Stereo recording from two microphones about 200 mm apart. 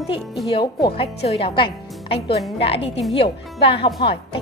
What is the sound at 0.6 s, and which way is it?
A woman's voice, 25° left (ahead or behind).